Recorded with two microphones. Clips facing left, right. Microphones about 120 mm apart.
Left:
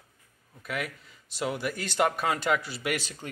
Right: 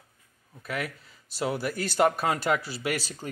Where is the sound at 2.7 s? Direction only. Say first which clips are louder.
Right 1 dB; 30° right (ahead or behind).